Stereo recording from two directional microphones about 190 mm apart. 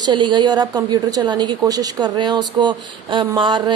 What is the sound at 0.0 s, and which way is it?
A woman's voice, 25° right (ahead or behind).